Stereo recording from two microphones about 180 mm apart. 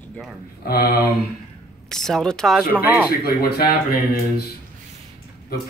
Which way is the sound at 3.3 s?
60° left (ahead or behind).